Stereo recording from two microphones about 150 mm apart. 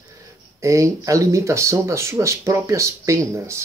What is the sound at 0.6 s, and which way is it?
Speech, 20° right (ahead or behind).